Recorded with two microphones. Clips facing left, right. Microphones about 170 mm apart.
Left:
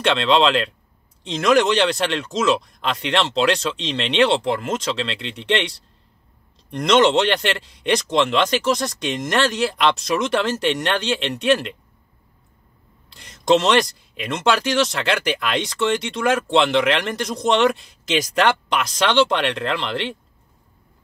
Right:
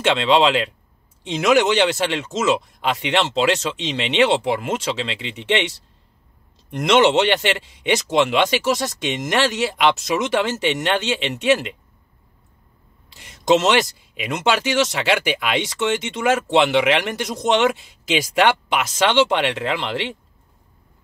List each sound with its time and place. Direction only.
0.1 s speech: 10° right (ahead or behind)
6.7 s speech: 5° right (ahead or behind)
13.1 s speech: 5° right (ahead or behind)